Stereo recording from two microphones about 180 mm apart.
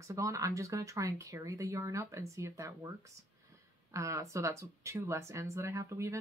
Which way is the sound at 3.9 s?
15° right (ahead or behind).